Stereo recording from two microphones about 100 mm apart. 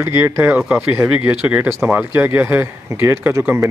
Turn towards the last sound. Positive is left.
turn(degrees=-30)  # may be behind; listen again after turning